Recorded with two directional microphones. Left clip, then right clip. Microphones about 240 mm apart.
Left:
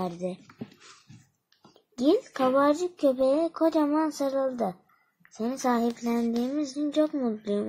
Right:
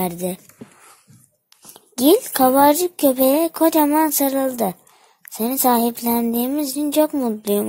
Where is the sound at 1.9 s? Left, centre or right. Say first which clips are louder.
Right 9 dB; right.